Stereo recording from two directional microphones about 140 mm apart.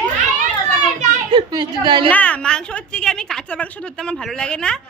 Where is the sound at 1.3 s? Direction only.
35° right (ahead or behind).